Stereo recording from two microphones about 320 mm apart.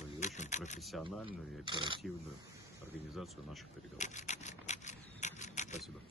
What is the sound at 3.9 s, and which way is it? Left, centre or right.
Rub, left.